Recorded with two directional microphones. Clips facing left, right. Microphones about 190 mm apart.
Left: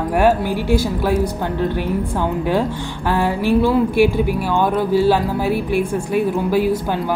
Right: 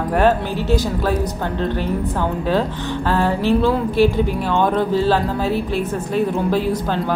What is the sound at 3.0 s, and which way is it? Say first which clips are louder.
A woman's voice: even; 15° left (ahead or behind).